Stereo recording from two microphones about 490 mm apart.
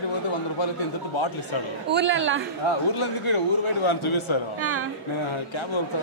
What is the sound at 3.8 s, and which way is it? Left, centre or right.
Speech, left.